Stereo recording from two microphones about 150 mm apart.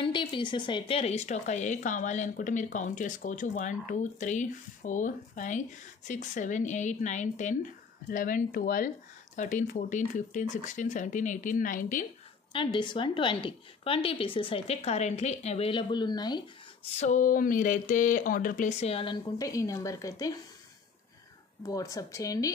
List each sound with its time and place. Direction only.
0.0 s speech: 35° left (ahead or behind); by 12.1 s 60° left (ahead or behind)
12.5 s a woman's voice: 30° left (ahead or behind)
16.9 s speech: 50° left (ahead or behind)
19.3 s speech: 20° left (ahead or behind)
21.6 s speech: 20° left (ahead or behind)